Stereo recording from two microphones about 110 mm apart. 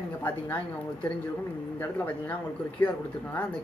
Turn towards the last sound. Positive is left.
turn(degrees=15)  # may be behind; listen again after turning